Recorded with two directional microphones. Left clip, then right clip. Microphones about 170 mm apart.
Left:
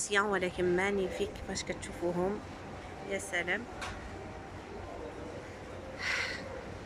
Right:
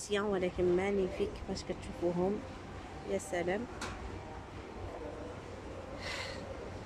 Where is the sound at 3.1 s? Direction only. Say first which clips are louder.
Left 1 dB; 20° right (ahead or behind).